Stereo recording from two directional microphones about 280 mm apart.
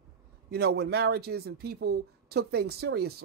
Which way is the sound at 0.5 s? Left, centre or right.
Right.